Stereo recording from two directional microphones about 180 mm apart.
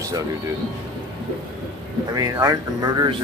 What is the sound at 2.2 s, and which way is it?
Speech, 20° right (ahead or behind).